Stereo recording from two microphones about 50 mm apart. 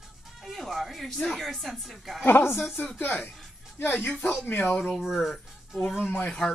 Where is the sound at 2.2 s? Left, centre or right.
Left.